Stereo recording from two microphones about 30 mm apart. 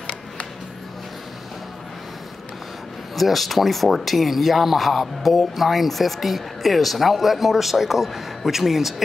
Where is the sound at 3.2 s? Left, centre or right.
Centre.